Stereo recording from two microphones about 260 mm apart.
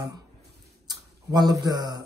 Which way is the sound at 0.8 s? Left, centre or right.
Centre.